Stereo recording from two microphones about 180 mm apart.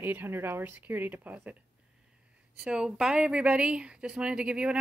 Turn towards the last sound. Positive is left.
turn(degrees=-5)  # may be behind; listen again after turning